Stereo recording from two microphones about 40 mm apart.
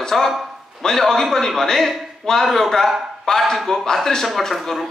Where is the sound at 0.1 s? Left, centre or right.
Centre.